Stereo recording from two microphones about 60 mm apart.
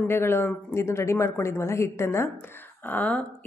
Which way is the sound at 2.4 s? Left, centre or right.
Left.